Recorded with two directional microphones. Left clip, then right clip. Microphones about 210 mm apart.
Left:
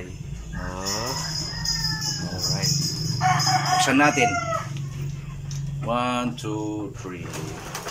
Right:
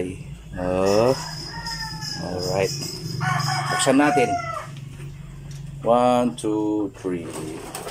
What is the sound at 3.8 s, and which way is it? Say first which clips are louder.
Speech: right 3 dB; 25° right (ahead or behind).